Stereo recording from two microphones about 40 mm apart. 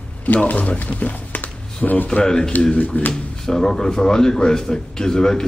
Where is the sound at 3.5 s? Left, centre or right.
Centre.